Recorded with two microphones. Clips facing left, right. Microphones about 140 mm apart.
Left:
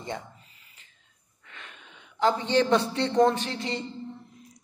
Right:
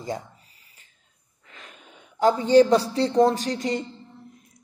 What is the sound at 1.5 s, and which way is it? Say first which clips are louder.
Speech: right 1 dB; 40° right (ahead or behind).